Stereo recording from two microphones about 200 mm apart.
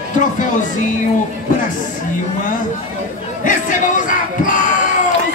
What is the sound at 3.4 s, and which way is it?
Crowd, 40° left (ahead or behind).